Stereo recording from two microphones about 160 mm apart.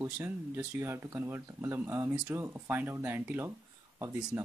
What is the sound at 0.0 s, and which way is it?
Speech, 15° right (ahead or behind).